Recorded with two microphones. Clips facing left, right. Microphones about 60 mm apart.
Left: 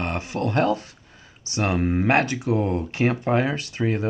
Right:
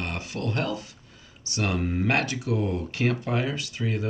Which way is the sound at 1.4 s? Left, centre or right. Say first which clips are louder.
Left 5 dB; left.